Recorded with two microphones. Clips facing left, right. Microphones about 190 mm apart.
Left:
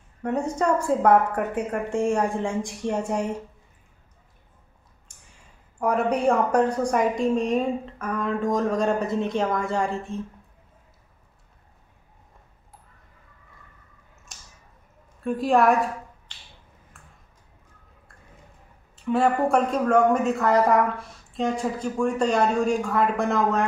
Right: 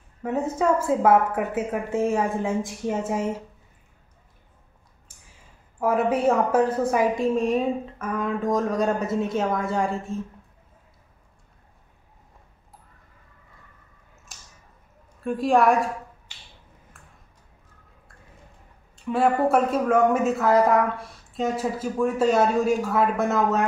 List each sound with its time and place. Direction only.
0.2 s speech: 5° right (ahead or behind)
5.8 s speech: 5° right (ahead or behind)
14.3 s a sound: centre (ahead or behind)
15.1 s a woman's voice: centre (ahead or behind)
16.3 s finger snapping: 10° right (ahead or behind)
17.0 s a sound: centre (ahead or behind)
18.9 s speech: centre (ahead or behind)